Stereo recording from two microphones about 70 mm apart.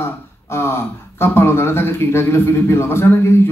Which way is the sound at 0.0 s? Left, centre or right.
Left.